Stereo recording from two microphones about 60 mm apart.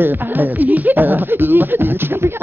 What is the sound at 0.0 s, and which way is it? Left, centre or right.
Speech, right.